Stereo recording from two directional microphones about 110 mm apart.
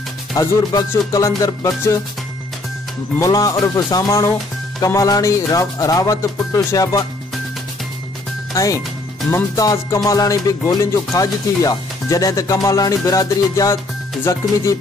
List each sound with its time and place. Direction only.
0.3 s music: 35° left (ahead or behind)
3.2 s music: 35° left (ahead or behind)
8.5 s music: 30° left (ahead or behind)
14.3 s speech: 30° left (ahead or behind)